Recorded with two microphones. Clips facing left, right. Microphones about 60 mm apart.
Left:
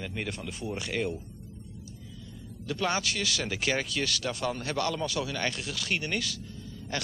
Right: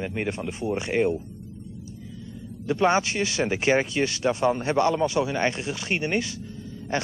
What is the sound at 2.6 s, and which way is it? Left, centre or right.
Speech, right.